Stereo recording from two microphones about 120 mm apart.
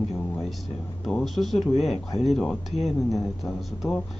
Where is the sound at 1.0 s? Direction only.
Centre (ahead or behind).